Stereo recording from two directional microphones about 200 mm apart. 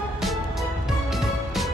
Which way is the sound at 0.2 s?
Centre (ahead or behind).